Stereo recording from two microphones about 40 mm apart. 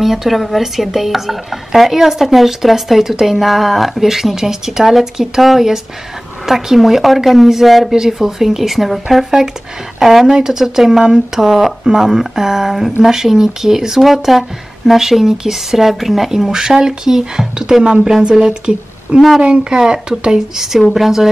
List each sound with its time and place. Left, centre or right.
0.0 s speech: centre; by 19.1 s right
19.1 s speech: centre
19.4 s speech: right; by 21.3 s centre